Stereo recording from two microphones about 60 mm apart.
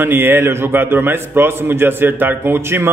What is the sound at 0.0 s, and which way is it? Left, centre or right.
A man's voice, right.